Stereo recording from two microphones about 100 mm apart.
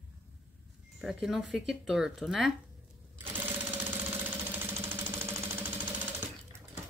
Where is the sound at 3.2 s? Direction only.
20° right (ahead or behind).